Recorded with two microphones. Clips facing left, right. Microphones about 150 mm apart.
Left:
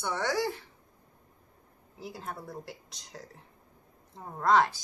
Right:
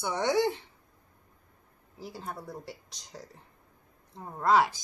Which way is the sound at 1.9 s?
Centre (ahead or behind).